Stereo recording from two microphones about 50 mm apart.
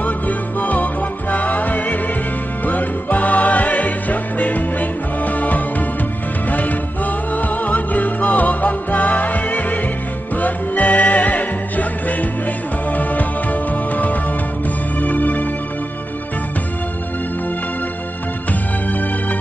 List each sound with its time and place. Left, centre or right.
0.0 s music: left